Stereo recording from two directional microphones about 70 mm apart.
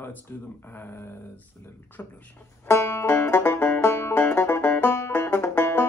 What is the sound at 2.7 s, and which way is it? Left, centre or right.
Banjo, left.